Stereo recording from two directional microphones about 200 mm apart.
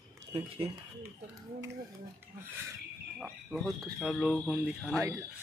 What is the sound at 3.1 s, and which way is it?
Speech, centre (ahead or behind).